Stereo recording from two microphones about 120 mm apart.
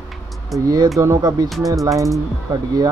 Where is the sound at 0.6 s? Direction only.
30° right (ahead or behind).